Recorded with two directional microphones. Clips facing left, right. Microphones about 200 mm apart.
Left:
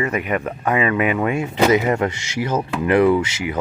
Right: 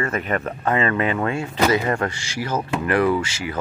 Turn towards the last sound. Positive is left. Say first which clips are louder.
# left 4 dB
turn(degrees=20)  # may be behind; listen again after turning